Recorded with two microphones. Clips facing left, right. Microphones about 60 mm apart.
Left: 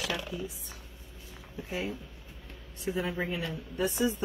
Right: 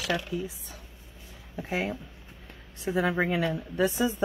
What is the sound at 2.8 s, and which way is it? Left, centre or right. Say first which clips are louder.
Speech: right 6 dB; right.